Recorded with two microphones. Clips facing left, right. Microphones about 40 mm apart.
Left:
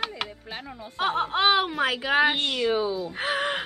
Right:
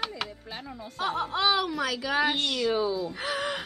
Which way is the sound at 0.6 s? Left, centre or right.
Centre.